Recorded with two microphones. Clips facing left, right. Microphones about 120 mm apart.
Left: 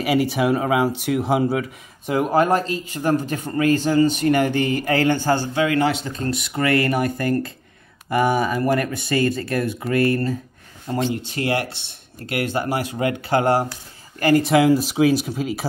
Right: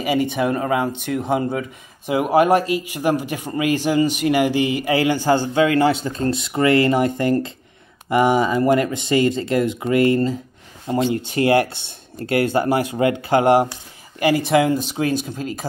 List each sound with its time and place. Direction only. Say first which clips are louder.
0.0 s speech: even; 5° left (ahead or behind); by 13.7 s 20° right (ahead or behind)
14.2 s speech: left 1 dB; centre (ahead or behind)